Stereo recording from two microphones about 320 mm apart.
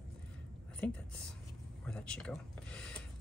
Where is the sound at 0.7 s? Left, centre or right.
Centre.